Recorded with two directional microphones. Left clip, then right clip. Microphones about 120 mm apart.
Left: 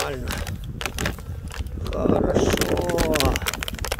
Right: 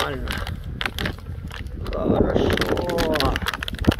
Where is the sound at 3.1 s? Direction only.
65° left (ahead or behind).